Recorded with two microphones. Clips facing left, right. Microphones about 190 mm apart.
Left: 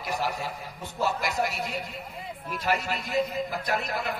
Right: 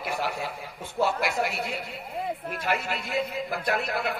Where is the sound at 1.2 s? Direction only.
40° left (ahead or behind).